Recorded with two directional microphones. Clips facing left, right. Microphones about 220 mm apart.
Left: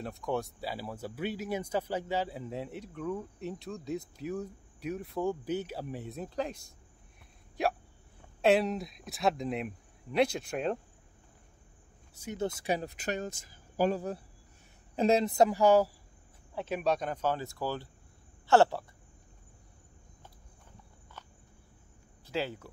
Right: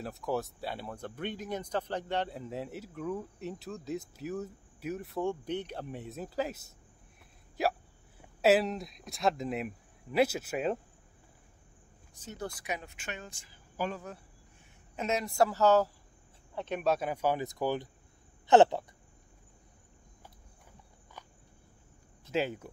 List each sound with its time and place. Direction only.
0.0 s speech: centre (ahead or behind)
7.6 s hiccup: centre (ahead or behind)
8.2 s speech: 5° right (ahead or behind)
12.1 s a sound: 10° left (ahead or behind)
12.4 s speech: 25° left (ahead or behind)
15.2 s speech: 20° left (ahead or behind); by 18.9 s 20° right (ahead or behind)
21.2 s cricket: 10° right (ahead or behind)
22.3 s speech: 20° right (ahead or behind)